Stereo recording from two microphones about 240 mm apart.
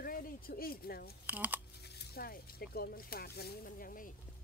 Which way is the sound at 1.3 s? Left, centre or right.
Centre.